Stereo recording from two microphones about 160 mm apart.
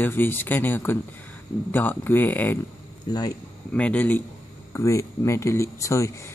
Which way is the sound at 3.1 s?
25° left (ahead or behind).